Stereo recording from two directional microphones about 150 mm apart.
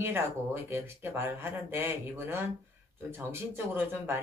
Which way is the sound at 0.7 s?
15° right (ahead or behind).